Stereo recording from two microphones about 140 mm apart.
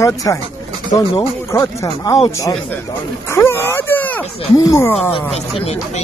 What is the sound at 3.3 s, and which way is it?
Speech, 20° left (ahead or behind).